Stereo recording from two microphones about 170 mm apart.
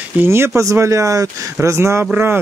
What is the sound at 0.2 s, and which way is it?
Speech, 15° right (ahead or behind).